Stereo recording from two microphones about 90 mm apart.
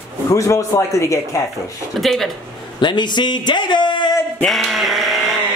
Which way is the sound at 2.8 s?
55° left (ahead or behind).